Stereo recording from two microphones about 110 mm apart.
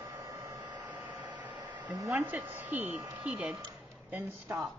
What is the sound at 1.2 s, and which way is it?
Hair dryer, 40° right (ahead or behind).